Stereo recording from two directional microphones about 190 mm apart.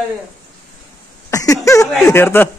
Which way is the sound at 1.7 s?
15° left (ahead or behind).